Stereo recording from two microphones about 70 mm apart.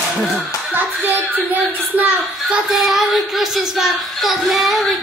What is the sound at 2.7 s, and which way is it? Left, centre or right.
Speech, centre.